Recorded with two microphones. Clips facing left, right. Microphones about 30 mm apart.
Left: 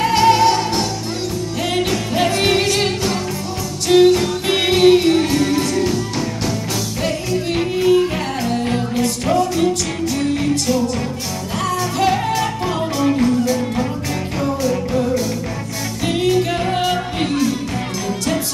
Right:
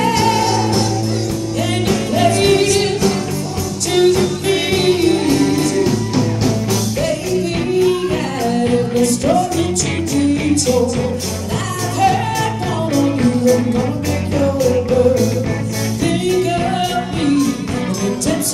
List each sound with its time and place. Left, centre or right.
0.0 s music: centre
1.9 s music: centre
8.5 s music: centre
12.0 s music: centre
16.0 s music: centre